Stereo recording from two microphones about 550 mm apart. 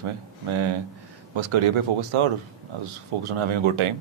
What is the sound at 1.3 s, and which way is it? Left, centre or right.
Speech, right.